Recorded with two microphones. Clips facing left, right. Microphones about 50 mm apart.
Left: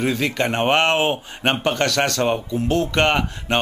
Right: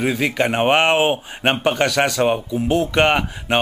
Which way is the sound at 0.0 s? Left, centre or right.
Centre.